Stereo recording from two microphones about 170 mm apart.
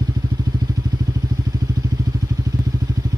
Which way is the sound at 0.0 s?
20° right (ahead or behind).